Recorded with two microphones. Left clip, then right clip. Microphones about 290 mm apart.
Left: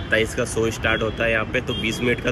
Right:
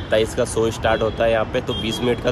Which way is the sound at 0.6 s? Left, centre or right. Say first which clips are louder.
Right 2 dB; centre.